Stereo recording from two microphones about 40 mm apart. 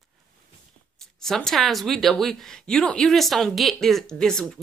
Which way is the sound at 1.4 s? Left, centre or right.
Centre.